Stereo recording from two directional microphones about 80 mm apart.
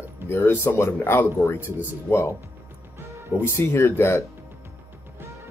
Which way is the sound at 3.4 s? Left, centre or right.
Left.